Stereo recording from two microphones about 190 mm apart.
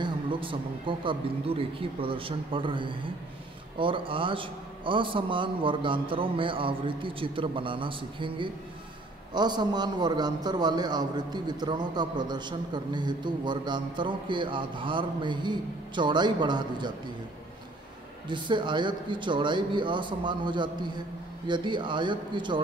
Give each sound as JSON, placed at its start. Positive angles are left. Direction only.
{"t": 0.0, "sound": "a man's voice", "side_deg": -25}
{"t": 18.3, "sound": "a man's voice", "side_deg": -25}